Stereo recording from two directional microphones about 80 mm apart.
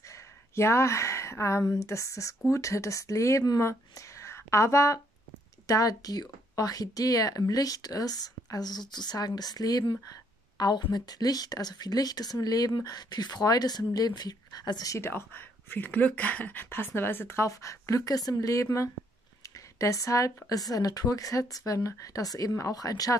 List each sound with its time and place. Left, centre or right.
0.1 s a sound: left
1.6 s speech: left
1.9 s speech: left
15.0 s speech: left